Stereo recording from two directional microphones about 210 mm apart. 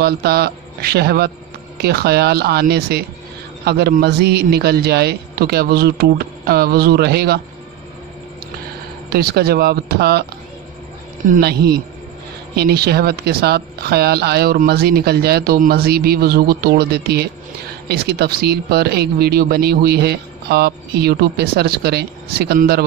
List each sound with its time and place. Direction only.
0.0 s speech: 50° right (ahead or behind)
9.1 s speech: 45° right (ahead or behind)
11.3 s speech: 50° right (ahead or behind)